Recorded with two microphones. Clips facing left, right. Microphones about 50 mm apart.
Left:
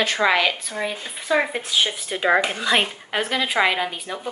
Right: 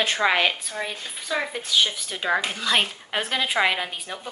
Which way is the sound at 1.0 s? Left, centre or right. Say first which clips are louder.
Left 9 dB; left.